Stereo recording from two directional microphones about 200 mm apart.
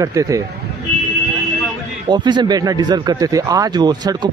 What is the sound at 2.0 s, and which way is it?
Speech, 20° right (ahead or behind).